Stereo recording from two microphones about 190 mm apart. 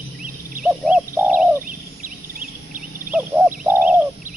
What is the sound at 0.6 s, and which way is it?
Bird, 5° right (ahead or behind).